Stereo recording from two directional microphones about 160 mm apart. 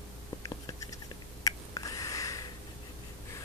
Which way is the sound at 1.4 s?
20° left (ahead or behind).